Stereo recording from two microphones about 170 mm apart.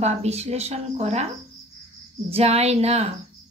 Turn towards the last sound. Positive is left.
turn(degrees=-40)  # may be behind; listen again after turning